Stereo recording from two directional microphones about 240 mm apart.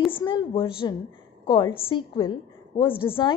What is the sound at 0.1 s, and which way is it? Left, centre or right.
A woman's voice, centre.